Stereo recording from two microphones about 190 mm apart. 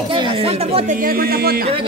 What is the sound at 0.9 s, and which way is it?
Speech, 50° right (ahead or behind).